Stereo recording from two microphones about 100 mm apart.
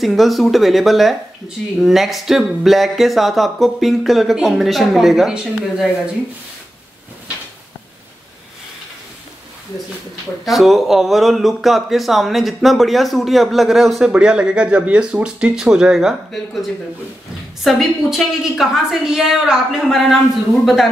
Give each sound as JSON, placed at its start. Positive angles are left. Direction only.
{"t": 0.0, "sound": "speech", "side_deg": 0}
{"t": 10.4, "sound": "speech", "side_deg": 0}
{"t": 17.6, "sound": "speech", "side_deg": 0}